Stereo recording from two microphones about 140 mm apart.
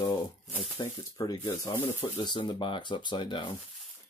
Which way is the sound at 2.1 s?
35° left (ahead or behind).